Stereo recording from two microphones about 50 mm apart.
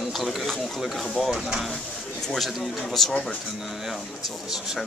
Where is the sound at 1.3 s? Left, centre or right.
Centre.